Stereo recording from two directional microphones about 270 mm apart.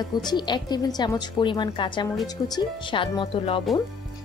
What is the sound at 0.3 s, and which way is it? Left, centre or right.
A woman's voice, centre.